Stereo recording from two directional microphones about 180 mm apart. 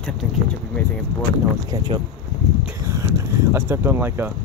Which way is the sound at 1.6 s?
20° right (ahead or behind).